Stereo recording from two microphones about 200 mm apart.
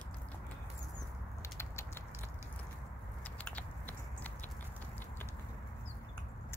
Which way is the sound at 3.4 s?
10° left (ahead or behind).